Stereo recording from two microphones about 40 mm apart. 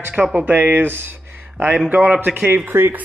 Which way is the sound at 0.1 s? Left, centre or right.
Right.